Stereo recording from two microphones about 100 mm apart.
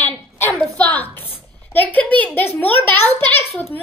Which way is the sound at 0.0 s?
20° left (ahead or behind).